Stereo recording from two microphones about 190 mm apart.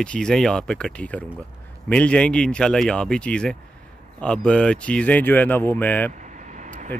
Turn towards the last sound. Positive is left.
turn(degrees=-40)  # may be behind; listen again after turning